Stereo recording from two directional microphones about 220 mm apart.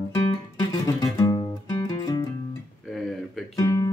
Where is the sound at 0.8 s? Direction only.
15° left (ahead or behind).